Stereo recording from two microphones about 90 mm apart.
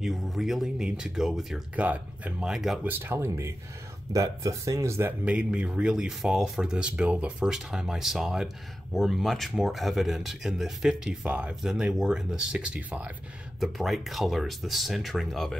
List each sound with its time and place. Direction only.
0.0 s speech: centre (ahead or behind)
1.8 s speech: 15° right (ahead or behind)
2.5 s speech: 5° right (ahead or behind)
2.8 s speech: 25° right (ahead or behind)
5.2 s speech: 15° right (ahead or behind)
13.6 s speech: centre (ahead or behind)